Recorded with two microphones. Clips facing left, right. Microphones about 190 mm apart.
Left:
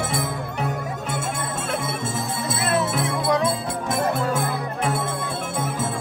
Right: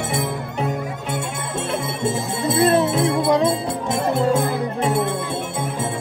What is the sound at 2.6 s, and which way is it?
Music, 35° right (ahead or behind).